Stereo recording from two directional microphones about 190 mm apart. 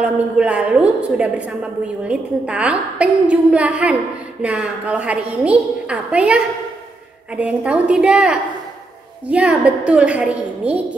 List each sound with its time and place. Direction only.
0.0 s a woman's voice: 5° right (ahead or behind)